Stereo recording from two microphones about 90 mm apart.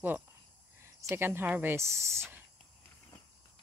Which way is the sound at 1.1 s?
25° right (ahead or behind).